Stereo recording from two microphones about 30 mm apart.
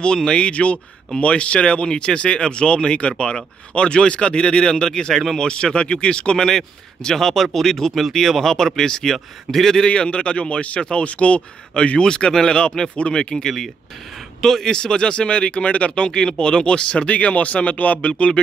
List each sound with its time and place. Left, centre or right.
0.0 s speech: left
0.5 s speech: left
6.3 s a man's voice: centre
9.8 s speech: left
12.0 s speech: left
15.9 s speech: left
17.1 s speech: left